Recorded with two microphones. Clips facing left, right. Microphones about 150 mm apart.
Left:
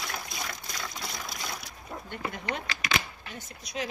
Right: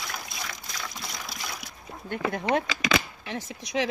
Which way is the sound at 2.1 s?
80° right.